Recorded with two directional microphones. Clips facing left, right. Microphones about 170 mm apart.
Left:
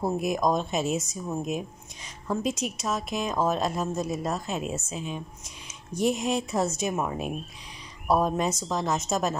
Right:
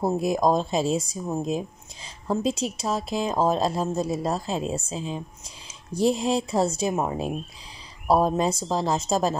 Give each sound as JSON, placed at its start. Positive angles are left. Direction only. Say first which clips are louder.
{"t": 0.0, "sound": "a woman's voice", "louder": "right 3 dB", "side_deg": -30}